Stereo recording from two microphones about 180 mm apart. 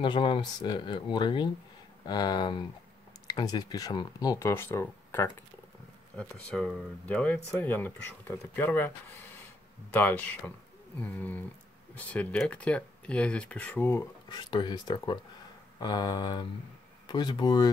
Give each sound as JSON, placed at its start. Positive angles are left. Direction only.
{"t": 0.0, "sound": "speech", "side_deg": 25}
{"t": 14.3, "sound": "speech", "side_deg": 25}